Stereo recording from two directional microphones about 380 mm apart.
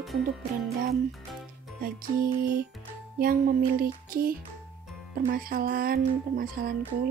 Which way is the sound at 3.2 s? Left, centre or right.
Right.